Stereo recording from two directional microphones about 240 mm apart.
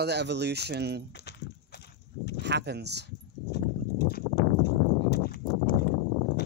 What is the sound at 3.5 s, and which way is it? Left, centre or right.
Clip-clop, left.